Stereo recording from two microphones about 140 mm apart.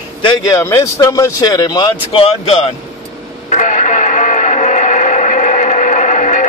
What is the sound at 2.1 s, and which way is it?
Speech, 45° left (ahead or behind).